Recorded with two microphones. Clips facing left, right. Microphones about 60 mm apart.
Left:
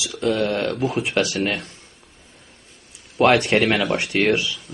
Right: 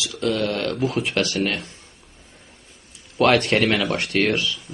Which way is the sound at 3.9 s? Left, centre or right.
Centre.